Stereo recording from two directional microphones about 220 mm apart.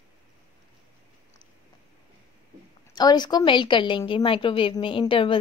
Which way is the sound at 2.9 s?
20° left (ahead or behind).